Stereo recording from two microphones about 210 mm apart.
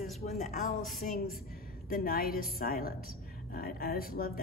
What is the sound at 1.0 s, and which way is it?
A woman's voice, 40° left (ahead or behind).